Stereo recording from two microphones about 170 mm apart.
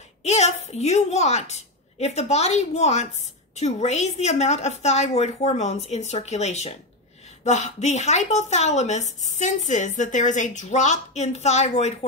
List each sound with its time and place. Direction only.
0.2 s a woman's voice: 40° left (ahead or behind)